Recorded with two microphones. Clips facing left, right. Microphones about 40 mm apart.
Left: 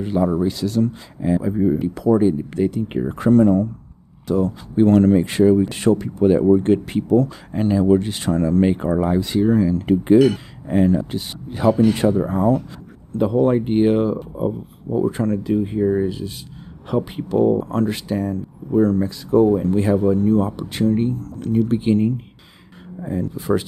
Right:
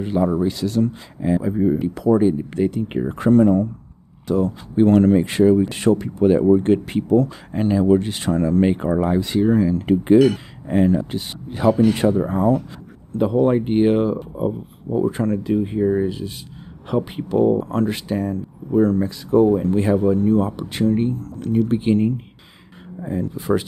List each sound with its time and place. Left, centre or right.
0.0 s speech: right
1.4 s speech: centre
2.1 s speech: right; by 7.3 s centre
7.5 s speech: right
7.8 s speech: right
18.7 s speech: right